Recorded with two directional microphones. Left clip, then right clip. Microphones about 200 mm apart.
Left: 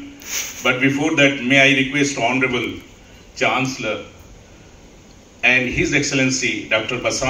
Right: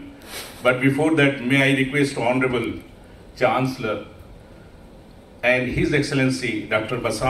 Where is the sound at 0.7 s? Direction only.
55° right (ahead or behind).